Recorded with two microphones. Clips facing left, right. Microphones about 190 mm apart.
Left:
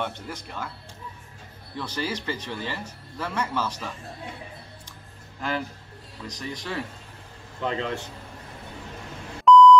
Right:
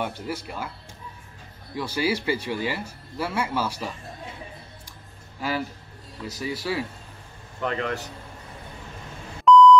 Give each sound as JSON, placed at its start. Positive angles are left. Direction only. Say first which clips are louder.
{"t": 0.0, "sound": "speech", "louder": "right 3 dB", "side_deg": -10}
{"t": 1.8, "sound": "speech", "louder": "right 5 dB", "side_deg": -10}
{"t": 6.2, "sound": "speech", "louder": "right 5 dB", "side_deg": -5}
{"t": 7.6, "sound": "a man's voice", "louder": "right 1 dB", "side_deg": 20}
{"t": 9.4, "sound": "beep", "louder": "even", "side_deg": 0}